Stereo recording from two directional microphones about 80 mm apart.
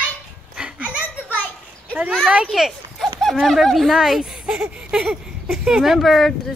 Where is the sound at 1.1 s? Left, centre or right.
Left.